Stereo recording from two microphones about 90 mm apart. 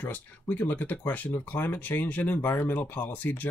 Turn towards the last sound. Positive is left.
turn(degrees=15)  # may be behind; listen again after turning